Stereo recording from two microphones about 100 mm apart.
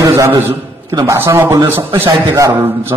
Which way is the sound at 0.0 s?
30° right (ahead or behind).